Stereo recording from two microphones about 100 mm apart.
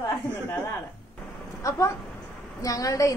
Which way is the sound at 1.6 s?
35° left (ahead or behind).